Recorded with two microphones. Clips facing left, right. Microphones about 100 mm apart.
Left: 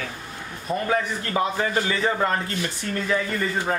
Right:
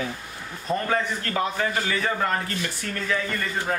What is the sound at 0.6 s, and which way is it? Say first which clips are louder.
A man's voice: left 1 dB; 15° left (ahead or behind).